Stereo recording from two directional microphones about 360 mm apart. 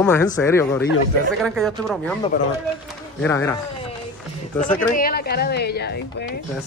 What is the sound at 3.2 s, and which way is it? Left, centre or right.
Speech, centre.